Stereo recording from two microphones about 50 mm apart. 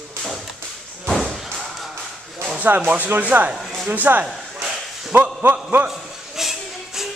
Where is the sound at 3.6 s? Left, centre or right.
Centre.